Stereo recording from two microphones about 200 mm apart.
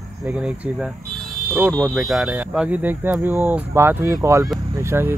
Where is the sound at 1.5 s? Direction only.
10° right (ahead or behind).